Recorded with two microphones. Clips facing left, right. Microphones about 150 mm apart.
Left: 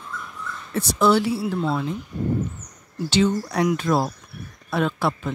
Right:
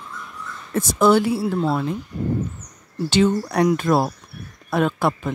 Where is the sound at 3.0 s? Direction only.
50° right (ahead or behind).